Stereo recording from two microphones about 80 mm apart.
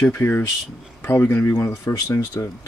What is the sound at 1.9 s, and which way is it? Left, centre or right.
Speech, left.